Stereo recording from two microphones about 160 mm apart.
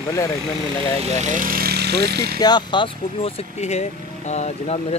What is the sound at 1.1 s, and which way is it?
Speech, 50° right (ahead or behind).